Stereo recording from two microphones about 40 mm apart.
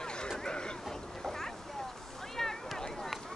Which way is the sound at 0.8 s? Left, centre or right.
Centre.